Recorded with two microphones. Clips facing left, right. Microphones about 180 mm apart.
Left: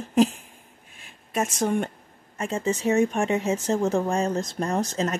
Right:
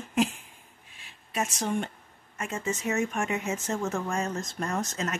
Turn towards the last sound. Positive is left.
turn(degrees=35)  # may be behind; listen again after turning